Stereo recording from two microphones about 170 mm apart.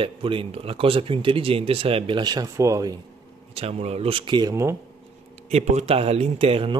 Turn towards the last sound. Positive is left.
turn(degrees=-35)  # may be behind; listen again after turning